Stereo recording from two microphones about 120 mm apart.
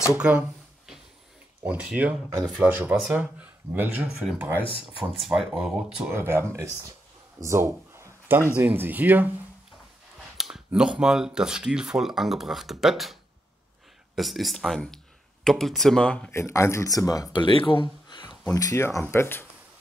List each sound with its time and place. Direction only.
0.1 s a sound: 10° right (ahead or behind)
1.6 s speech: 10° right (ahead or behind)
6.1 s speech: 20° right (ahead or behind)
10.3 s speech: 5° right (ahead or behind)
16.3 s speech: 20° left (ahead or behind)
17.3 s speech: 40° left (ahead or behind); by 19.4 s 20° left (ahead or behind)